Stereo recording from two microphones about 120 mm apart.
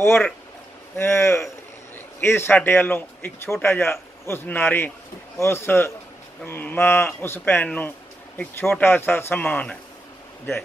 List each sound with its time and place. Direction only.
0.0 s speech: 15° left (ahead or behind)